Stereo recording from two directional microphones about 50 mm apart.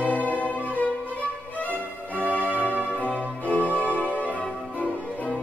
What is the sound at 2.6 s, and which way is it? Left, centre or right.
Organ, left.